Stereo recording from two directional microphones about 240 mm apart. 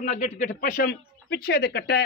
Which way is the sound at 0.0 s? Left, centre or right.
Left.